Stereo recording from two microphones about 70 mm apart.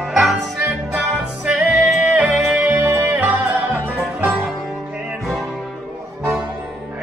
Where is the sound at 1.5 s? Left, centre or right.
Centre.